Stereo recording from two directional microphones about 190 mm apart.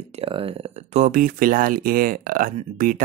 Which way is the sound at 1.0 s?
45° right (ahead or behind).